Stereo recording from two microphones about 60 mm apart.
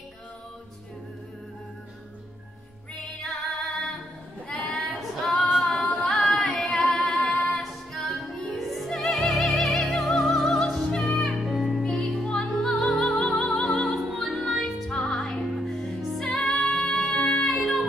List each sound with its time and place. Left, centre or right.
3.2 s music: centre
4.7 s female singing: centre
6.0 s singing: centre
6.6 s music: centre
7.0 s music: left
7.5 s music: centre